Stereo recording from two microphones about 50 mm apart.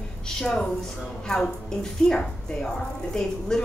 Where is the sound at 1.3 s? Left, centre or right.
Centre.